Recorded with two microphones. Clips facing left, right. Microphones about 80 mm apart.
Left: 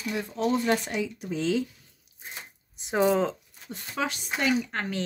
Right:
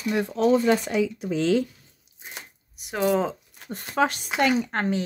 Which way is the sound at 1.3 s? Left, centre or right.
Right.